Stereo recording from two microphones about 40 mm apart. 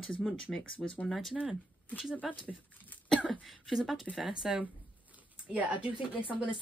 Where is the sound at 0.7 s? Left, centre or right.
Left.